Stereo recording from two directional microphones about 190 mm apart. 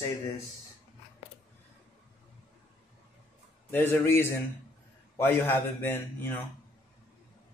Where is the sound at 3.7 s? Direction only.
10° left (ahead or behind).